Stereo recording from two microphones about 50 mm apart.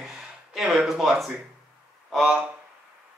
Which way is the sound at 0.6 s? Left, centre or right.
Centre.